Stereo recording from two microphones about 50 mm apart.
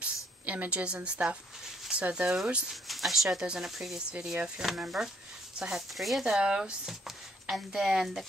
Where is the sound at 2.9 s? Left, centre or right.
Centre.